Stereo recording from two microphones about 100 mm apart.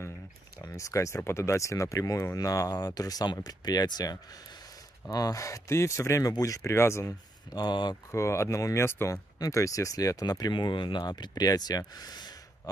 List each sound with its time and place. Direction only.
0.6 s speech: 30° left (ahead or behind)
7.5 s speech: 50° left (ahead or behind)
8.1 s speech: 30° left (ahead or behind); by 12.4 s 45° left (ahead or behind)